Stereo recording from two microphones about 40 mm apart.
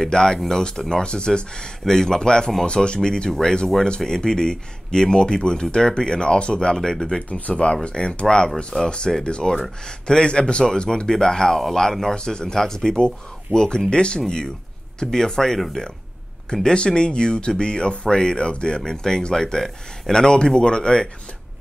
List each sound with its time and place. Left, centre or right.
0.1 s speech: centre
7.2 s speech: left
7.5 s speech: left
16.6 s speech: left